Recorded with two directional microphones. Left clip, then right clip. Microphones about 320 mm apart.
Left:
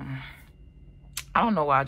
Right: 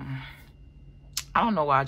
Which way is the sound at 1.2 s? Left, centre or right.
Centre.